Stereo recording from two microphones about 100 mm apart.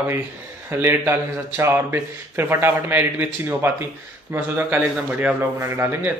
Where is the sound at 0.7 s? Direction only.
25° right (ahead or behind).